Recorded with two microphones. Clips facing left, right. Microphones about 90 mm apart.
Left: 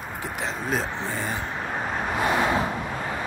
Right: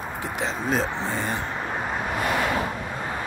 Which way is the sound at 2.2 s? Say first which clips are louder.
Left 2 dB; 20° left (ahead or behind).